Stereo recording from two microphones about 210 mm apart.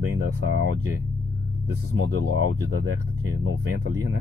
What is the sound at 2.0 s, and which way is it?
Speech, 85° right.